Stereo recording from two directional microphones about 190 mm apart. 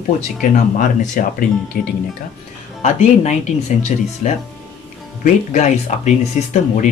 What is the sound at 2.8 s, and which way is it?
Speech, 35° left (ahead or behind).